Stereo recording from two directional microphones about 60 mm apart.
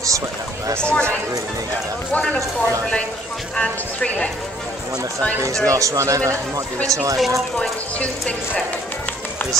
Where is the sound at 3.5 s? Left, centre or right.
Left.